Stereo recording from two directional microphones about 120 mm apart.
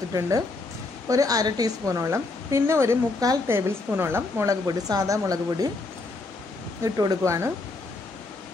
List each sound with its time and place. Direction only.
1.0 s a woman's voice: 30° right (ahead or behind)
6.8 s a woman's voice: 30° right (ahead or behind)